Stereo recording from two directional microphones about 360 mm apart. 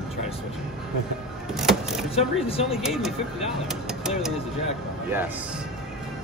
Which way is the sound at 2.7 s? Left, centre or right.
Centre.